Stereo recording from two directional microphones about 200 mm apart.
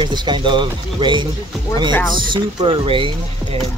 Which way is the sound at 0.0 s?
25° right (ahead or behind).